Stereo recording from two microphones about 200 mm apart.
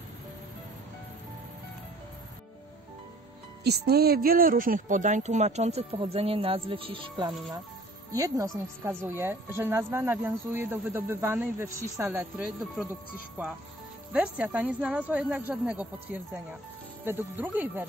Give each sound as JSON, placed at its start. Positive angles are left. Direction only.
{"t": 3.6, "sound": "speech", "side_deg": -55}
{"t": 14.1, "sound": "speech", "side_deg": -5}